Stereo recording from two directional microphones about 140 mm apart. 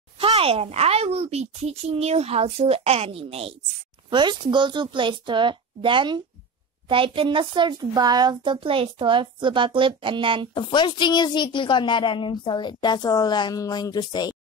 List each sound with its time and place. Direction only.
0.2 s a woman's voice: 40° right (ahead or behind)
4.1 s speech: 35° right (ahead or behind)
10.5 s a woman's voice: 35° left (ahead or behind)